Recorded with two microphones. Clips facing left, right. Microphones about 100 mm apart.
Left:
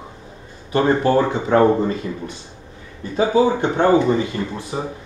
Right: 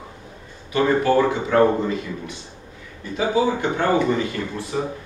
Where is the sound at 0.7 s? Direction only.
30° left (ahead or behind).